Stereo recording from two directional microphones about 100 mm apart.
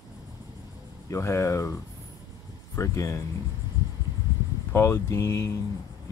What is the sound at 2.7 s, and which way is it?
Speech, 30° left (ahead or behind).